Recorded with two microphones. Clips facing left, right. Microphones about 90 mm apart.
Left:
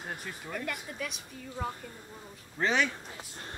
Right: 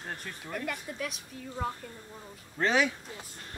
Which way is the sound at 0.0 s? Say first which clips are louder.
Left 1 dB; 5° left (ahead or behind).